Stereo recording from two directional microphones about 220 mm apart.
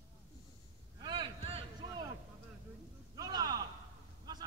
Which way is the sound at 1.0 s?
20° right (ahead or behind).